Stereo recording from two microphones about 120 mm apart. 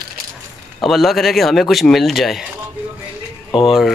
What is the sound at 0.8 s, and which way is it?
A man's voice, centre (ahead or behind).